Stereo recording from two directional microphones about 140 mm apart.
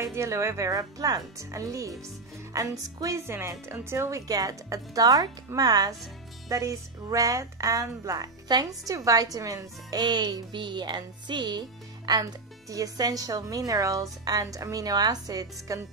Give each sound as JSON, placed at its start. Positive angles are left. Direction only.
{"t": 0.0, "sound": "speech", "side_deg": -20}